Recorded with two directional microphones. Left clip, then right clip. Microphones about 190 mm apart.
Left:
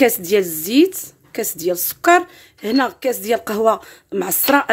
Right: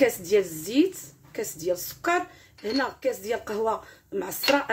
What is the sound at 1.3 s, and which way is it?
Speech, 60° left (ahead or behind).